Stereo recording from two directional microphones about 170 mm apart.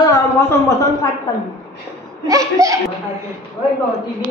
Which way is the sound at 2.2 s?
20° right (ahead or behind).